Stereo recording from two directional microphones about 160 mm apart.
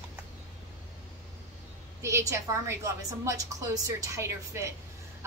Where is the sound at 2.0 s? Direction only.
15° right (ahead or behind).